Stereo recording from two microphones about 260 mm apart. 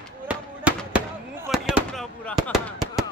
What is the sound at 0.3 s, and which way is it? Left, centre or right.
Fireworks, centre.